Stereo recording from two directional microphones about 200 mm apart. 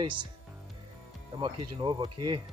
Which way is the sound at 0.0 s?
25° right (ahead or behind).